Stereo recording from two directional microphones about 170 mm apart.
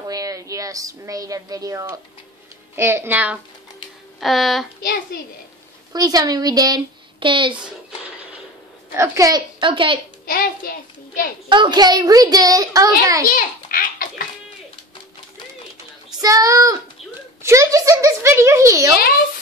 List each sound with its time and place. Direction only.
0.1 s a child's voice: 20° right (ahead or behind); by 4.6 s centre (ahead or behind)
4.8 s a child's voice: 60° left (ahead or behind)
5.9 s speech: 20° right (ahead or behind)
8.9 s speech: 15° right (ahead or behind)
10.2 s a child's voice: 55° left (ahead or behind)
11.4 s speech: 30° right (ahead or behind)
13.3 s a sound: 55° left (ahead or behind)
16.2 s a child's voice: 20° right (ahead or behind)